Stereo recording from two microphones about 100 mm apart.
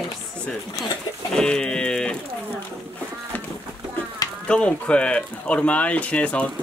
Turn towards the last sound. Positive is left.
turn(degrees=10)  # may be behind; listen again after turning